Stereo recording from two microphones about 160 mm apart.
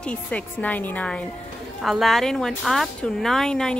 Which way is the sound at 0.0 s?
10° left (ahead or behind).